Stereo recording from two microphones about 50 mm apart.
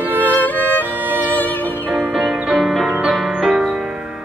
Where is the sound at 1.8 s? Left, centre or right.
Right.